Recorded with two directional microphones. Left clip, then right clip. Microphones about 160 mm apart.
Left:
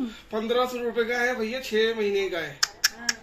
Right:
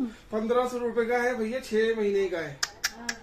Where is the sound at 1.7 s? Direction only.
50° right (ahead or behind).